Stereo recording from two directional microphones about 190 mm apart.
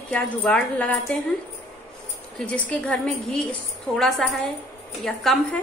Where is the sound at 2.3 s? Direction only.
5° left (ahead or behind).